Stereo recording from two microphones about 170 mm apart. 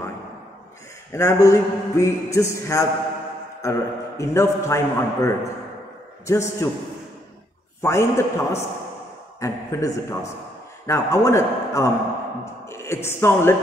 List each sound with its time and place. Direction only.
1.1 s a man's voice: 15° left (ahead or behind)
7.8 s a man's voice: 15° left (ahead or behind)